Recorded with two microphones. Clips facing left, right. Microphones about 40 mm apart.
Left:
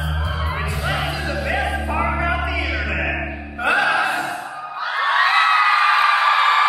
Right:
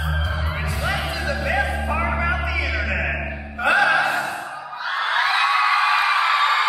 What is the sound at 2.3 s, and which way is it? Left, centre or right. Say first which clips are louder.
Music: left 1 dB; centre.